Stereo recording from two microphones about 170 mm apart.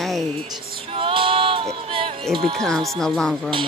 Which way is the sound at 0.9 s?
30° right (ahead or behind).